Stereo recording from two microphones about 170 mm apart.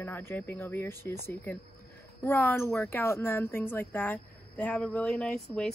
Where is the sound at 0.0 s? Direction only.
15° left (ahead or behind).